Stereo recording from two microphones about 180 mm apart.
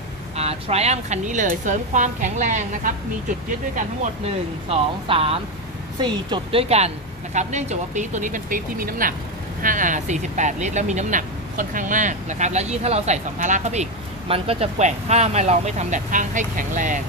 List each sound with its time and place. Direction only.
0.4 s speech: 35° right (ahead or behind)
4.6 s speech: 30° right (ahead or behind)